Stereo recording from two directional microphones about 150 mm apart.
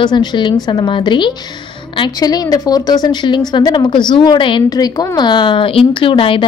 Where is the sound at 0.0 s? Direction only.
30° left (ahead or behind).